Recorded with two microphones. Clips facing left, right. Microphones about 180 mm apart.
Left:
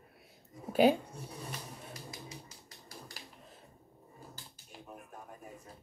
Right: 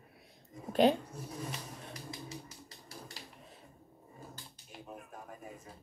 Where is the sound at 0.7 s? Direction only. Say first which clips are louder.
Left 1 dB; 5° left (ahead or behind).